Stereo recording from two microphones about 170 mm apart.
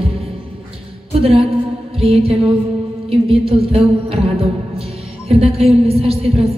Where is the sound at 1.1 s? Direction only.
35° right (ahead or behind).